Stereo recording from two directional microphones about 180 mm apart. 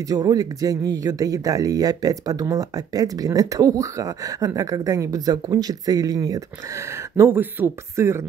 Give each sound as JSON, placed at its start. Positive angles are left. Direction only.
{"t": 0.1, "sound": "speech", "side_deg": -20}